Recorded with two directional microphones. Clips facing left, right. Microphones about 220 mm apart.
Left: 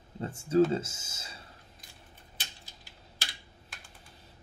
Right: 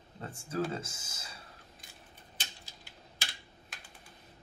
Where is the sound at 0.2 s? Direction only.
25° left (ahead or behind).